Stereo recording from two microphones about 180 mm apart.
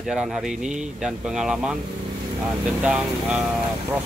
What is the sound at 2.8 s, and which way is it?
Speech, 5° right (ahead or behind).